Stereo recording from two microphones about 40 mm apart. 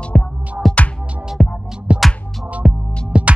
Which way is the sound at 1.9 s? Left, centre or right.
Right.